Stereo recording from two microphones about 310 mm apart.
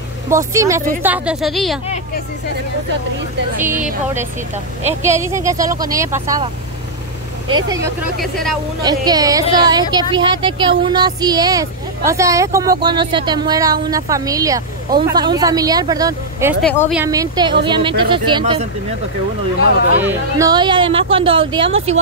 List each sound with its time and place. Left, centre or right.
0.3 s speech: centre
3.5 s speech: centre
5.0 s speech: centre
16.6 s speech: centre
16.9 s speech: centre
20.0 s speech: centre